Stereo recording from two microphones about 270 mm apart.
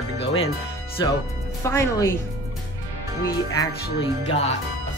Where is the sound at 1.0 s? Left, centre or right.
Centre.